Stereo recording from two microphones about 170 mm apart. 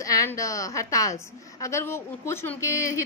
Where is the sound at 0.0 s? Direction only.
20° left (ahead or behind).